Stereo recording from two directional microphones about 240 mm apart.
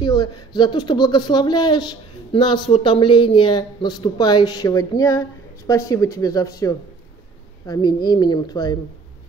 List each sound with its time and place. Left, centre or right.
0.0 s speech: centre